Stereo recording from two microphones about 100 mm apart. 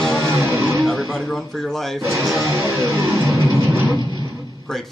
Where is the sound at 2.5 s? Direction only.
30° right (ahead or behind).